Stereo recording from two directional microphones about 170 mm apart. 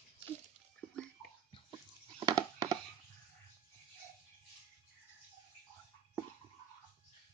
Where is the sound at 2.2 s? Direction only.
20° right (ahead or behind).